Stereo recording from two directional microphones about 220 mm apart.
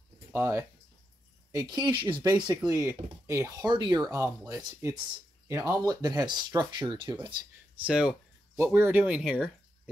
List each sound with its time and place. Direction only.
0.3 s speech: 10° right (ahead or behind)
7.8 s speech: 5° right (ahead or behind)